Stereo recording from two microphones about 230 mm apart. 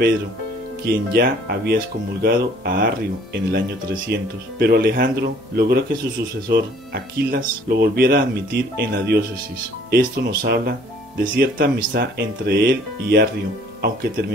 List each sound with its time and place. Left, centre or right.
0.8 s speech: right